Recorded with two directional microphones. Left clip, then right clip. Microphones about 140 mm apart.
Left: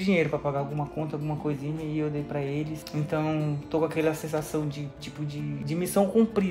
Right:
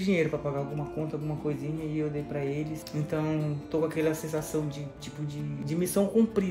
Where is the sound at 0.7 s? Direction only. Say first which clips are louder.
Left 2 dB; 5° left (ahead or behind).